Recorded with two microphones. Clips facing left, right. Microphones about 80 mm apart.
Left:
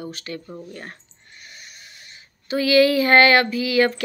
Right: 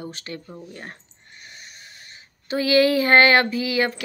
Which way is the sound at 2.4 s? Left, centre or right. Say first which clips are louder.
Left 2 dB; right.